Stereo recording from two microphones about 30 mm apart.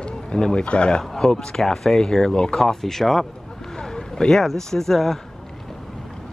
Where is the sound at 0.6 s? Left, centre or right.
Left.